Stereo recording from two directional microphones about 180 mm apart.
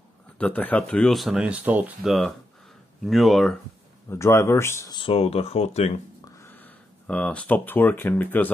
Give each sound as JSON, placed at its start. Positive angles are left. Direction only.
{"t": 0.4, "sound": "speech", "side_deg": 10}
{"t": 4.1, "sound": "speech", "side_deg": 15}
{"t": 6.2, "sound": "speech", "side_deg": 15}